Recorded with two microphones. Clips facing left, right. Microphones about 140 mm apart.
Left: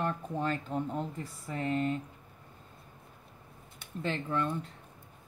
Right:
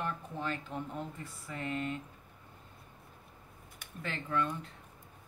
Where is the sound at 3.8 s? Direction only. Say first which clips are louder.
Left 7 dB; 30° left (ahead or behind).